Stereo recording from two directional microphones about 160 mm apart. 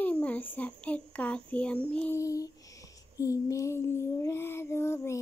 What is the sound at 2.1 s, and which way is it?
Child singing, 20° left (ahead or behind).